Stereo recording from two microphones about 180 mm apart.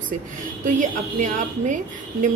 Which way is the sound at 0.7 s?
45° right (ahead or behind).